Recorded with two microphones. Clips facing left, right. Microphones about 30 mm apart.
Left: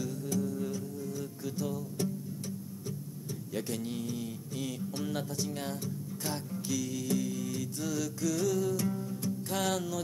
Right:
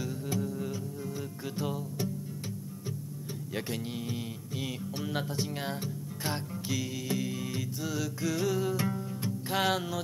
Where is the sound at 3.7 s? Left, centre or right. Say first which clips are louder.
Even; right.